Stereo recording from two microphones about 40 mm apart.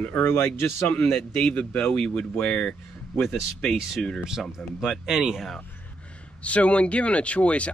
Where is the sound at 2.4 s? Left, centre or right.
Left.